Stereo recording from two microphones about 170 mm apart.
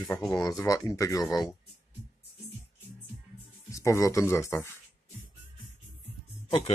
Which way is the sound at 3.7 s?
20° left (ahead or behind).